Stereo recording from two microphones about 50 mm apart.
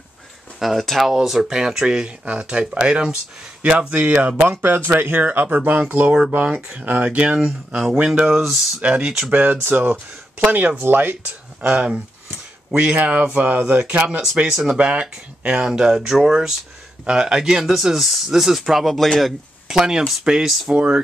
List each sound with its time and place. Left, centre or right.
0.6 s speech: centre
3.6 s speech: right
7.3 s speech: centre
7.9 s speech: centre
8.3 s speech: centre
8.8 s speech: right
9.6 s speech: right
11.6 s speech: right
14.5 s speech: centre
14.8 s speech: right; by 19.3 s centre
19.7 s speech: centre
20.7 s speech: right